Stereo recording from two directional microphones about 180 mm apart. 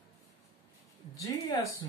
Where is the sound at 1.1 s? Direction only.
20° left (ahead or behind).